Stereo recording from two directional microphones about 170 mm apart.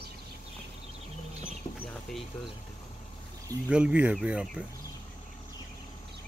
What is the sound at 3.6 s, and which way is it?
Speech, 5° right (ahead or behind).